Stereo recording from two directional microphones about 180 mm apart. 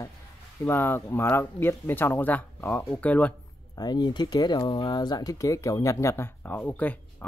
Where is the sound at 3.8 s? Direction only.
25° left (ahead or behind).